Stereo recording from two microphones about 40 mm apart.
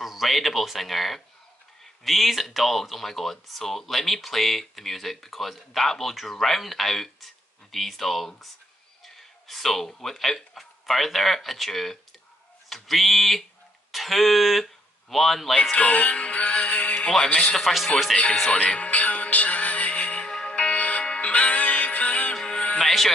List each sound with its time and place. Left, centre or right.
0.0 s speech: centre
15.7 s music: left
17.2 s speech: left
18.5 s music: left
20.2 s music: centre
20.5 s music: left
22.3 s music: left
22.8 s music: centre